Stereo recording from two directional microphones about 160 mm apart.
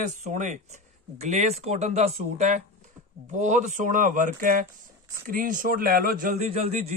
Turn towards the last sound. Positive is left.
turn(degrees=-40)  # may be behind; listen again after turning